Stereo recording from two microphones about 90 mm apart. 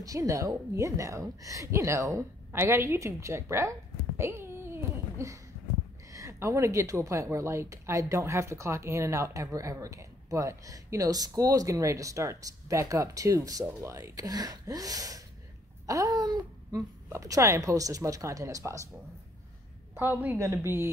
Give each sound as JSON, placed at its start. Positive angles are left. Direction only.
{"t": 0.0, "sound": "a woman's voice", "side_deg": -40}
{"t": 4.2, "sound": "a sound", "side_deg": -30}
{"t": 6.1, "sound": "a woman's voice", "side_deg": -35}
{"t": 19.9, "sound": "a woman's voice", "side_deg": -20}